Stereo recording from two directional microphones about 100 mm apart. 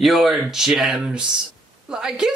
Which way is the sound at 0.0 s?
Centre (ahead or behind).